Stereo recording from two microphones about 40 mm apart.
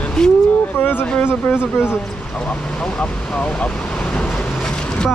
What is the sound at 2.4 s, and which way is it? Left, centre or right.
Speech, left.